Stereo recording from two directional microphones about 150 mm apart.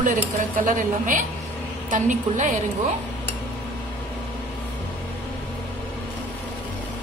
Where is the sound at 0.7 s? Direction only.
60° right (ahead or behind).